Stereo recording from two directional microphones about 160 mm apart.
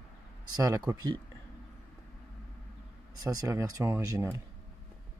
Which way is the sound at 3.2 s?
20° right (ahead or behind).